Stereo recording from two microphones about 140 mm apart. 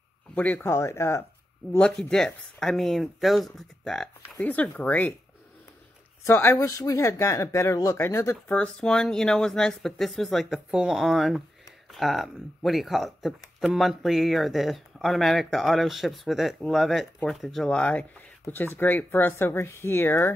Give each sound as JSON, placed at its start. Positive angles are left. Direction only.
{"t": 0.3, "sound": "speech", "side_deg": 10}
{"t": 1.7, "sound": "speech", "side_deg": 5}
{"t": 6.2, "sound": "speech", "side_deg": 15}